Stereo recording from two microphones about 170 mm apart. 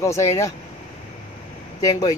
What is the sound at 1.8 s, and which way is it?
Speech, 20° left (ahead or behind).